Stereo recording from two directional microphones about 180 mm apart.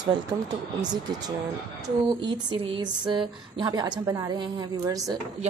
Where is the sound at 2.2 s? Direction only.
30° right (ahead or behind).